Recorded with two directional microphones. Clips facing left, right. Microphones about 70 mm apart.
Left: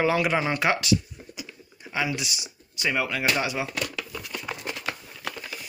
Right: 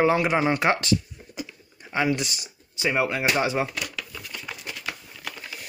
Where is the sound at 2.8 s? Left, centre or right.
Right.